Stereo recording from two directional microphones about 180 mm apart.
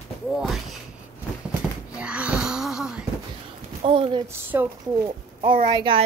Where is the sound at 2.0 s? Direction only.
5° right (ahead or behind).